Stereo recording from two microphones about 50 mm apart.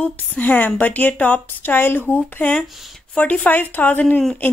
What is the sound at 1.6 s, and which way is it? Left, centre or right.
A woman's voice, left.